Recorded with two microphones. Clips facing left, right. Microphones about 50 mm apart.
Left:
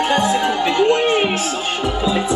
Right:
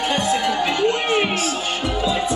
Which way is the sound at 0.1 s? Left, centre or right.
Left.